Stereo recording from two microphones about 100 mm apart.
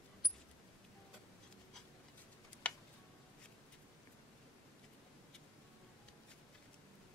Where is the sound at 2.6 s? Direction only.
10° left (ahead or behind).